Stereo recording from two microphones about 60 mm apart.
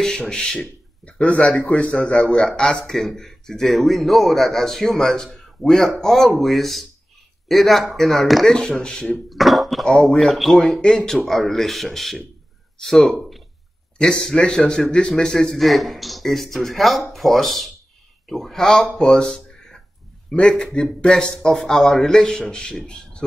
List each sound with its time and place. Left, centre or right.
0.3 s a man's voice: centre
9.3 s a sound: centre
9.8 s a man's voice: centre
13.9 s a man's voice: centre
18.8 s a man's voice: centre